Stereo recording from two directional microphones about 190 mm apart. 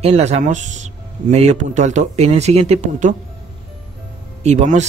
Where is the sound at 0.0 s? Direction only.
35° right (ahead or behind).